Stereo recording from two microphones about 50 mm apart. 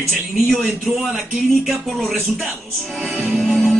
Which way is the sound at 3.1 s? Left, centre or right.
Right.